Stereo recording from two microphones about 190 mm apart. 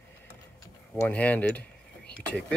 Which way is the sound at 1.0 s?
10° left (ahead or behind).